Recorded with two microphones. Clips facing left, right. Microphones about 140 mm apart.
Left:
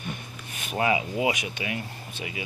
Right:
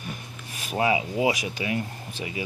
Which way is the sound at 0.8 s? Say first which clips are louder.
Right 1 dB; 25° right (ahead or behind).